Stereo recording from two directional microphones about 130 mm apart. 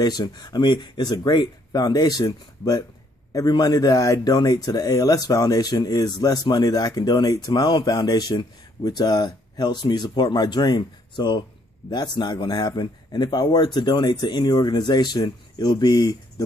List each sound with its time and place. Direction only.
0.0 s speech: 35° left (ahead or behind)